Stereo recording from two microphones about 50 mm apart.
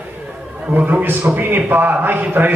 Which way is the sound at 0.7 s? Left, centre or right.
Right.